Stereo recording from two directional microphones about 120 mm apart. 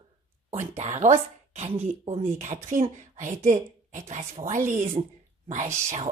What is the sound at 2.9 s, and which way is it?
A woman's voice, 90° right.